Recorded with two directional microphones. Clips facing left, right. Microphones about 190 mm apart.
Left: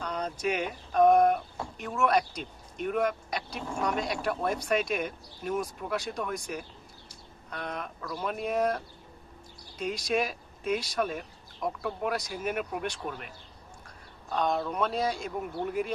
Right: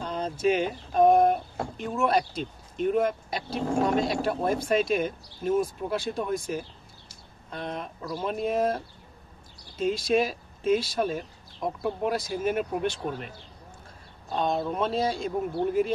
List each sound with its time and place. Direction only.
0.0 s speech: 25° right (ahead or behind)
14.3 s speech: 25° right (ahead or behind)